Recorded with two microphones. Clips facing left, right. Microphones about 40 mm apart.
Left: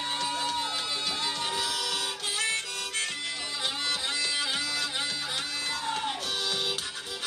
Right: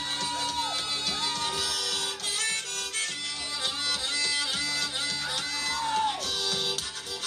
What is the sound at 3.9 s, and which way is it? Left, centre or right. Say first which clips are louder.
Music: even; centre.